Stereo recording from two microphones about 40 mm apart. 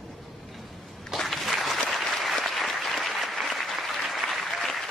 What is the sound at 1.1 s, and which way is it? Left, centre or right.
Applause, centre.